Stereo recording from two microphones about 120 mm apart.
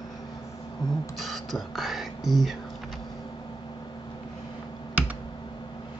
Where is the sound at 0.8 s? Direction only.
35° left (ahead or behind).